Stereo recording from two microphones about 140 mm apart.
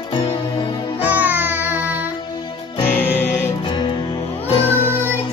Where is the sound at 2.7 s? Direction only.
15° left (ahead or behind).